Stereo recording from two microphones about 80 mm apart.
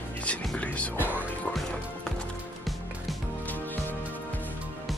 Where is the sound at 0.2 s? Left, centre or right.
Centre.